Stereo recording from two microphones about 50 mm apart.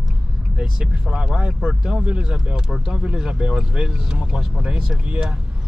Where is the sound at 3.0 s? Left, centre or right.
Right.